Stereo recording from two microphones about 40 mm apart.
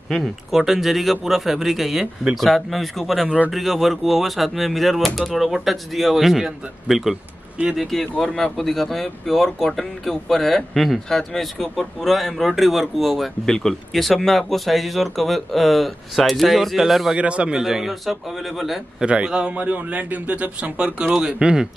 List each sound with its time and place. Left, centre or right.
0.1 s speech: centre
13.5 s speech: centre
17.2 s speech: right
17.5 s speech: centre
19.0 s speech: right
19.5 s speech: right
20.7 s speech: right